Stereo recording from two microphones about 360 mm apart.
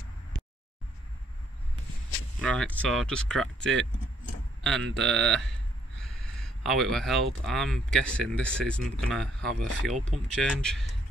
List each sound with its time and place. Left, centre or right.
2.4 s speech: centre
3.3 s speech: right
4.9 s speech: centre
6.0 s a sound: centre
7.4 s speech: centre
9.9 s speech: centre
10.3 s speech: centre